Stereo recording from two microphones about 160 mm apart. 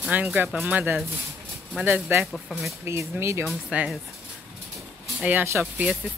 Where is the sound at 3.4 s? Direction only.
5° right (ahead or behind).